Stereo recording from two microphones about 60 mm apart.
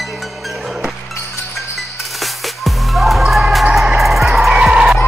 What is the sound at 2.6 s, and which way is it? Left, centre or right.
Music, centre.